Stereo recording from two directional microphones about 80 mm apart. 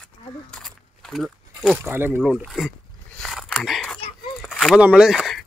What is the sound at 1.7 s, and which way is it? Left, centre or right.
Speech, right.